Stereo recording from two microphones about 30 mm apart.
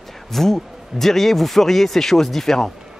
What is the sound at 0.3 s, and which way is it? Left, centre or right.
Speech, centre.